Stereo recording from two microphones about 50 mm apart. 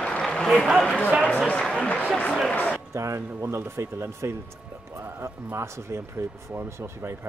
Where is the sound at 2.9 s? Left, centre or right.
Right.